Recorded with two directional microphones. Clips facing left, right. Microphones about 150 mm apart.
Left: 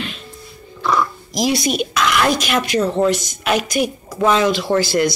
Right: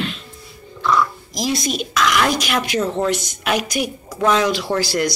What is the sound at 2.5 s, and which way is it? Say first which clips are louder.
Speech: left 3 dB; centre (ahead or behind).